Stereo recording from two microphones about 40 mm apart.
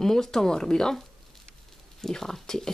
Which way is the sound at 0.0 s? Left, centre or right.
Centre.